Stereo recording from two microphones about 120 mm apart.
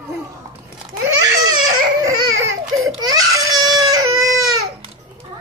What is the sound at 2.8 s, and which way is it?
Baby cry, 30° right (ahead or behind).